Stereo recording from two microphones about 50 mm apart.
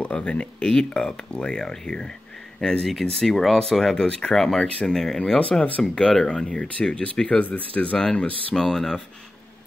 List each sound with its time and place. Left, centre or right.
0.1 s speech: left
2.8 s speech: centre
4.6 s speech: left
4.9 s speech: centre
5.4 s speech: left
8.5 s speech: centre